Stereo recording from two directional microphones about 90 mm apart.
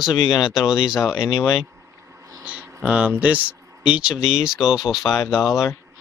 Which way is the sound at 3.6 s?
35° right (ahead or behind).